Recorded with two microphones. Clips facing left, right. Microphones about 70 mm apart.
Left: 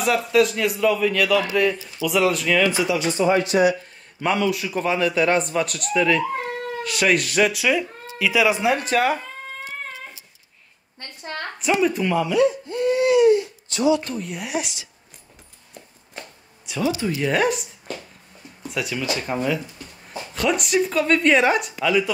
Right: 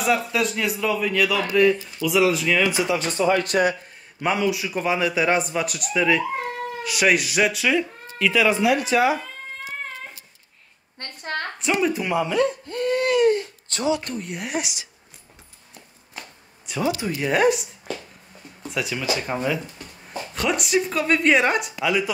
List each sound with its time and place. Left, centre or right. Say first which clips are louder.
0.0 s speech: left 3 dB; centre
2.9 s speech: left 1 dB; right
4.2 s a man's voice: left 1 dB; centre
8.7 s speech: right 1 dB; left
11.0 s a sound: right 3 dB; right
11.6 s speech: left 3 dB; centre
12.0 s a man's voice: left 2 dB; centre
12.3 s crying: left 3 dB; right
14.0 s speech: left 1 dB; centre
16.7 s speech: left 1 dB; centre